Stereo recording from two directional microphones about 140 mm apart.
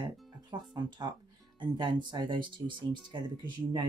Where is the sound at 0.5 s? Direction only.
30° right (ahead or behind).